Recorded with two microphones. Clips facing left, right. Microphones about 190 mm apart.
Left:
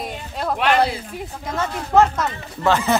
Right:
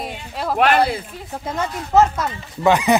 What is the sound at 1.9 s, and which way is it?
Speech, 5° right (ahead or behind).